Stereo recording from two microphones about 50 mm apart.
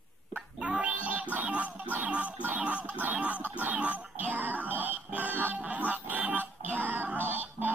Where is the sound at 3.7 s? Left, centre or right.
Right.